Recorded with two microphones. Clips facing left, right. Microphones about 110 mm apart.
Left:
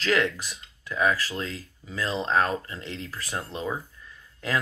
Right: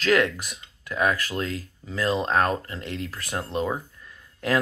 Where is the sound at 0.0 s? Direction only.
55° right (ahead or behind).